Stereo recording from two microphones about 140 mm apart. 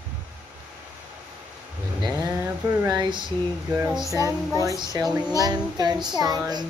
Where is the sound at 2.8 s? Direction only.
30° right (ahead or behind).